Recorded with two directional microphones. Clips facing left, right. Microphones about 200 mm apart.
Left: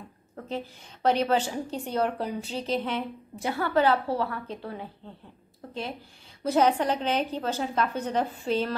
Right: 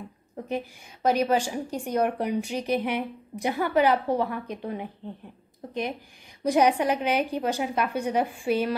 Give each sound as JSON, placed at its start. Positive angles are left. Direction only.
{"t": 0.4, "sound": "a woman's voice", "side_deg": -15}